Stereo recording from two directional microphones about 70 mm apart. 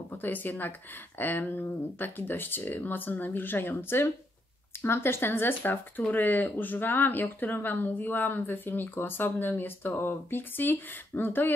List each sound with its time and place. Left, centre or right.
0.1 s speech: left